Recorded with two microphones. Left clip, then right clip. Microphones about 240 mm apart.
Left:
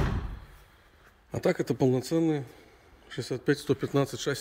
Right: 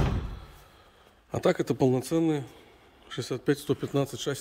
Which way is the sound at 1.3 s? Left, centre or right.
Centre.